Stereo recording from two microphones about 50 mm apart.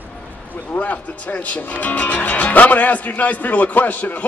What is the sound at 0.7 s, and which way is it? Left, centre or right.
Speech, left.